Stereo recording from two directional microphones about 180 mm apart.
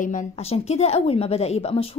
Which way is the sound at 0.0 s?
40° left (ahead or behind).